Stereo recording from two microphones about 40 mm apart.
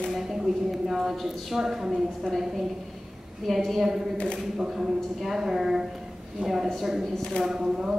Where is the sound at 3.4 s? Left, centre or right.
Centre.